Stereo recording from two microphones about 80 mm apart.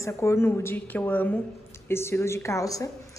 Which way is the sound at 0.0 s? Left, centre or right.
Left.